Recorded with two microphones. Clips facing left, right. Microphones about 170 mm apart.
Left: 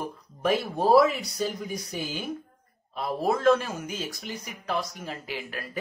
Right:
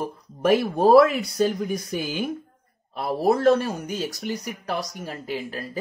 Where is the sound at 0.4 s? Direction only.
50° right (ahead or behind).